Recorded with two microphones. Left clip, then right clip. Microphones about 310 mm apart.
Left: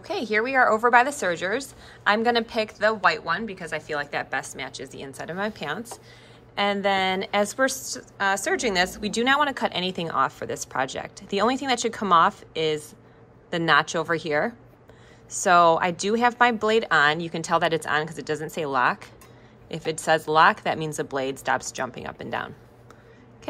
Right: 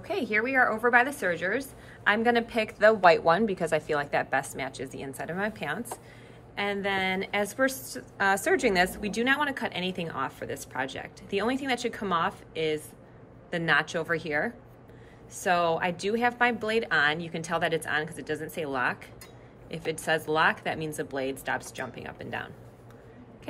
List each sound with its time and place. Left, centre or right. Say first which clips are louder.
0.0 s a woman's voice: left 3 dB; centre